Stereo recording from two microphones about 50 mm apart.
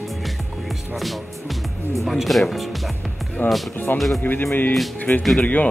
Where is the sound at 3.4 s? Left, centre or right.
Left.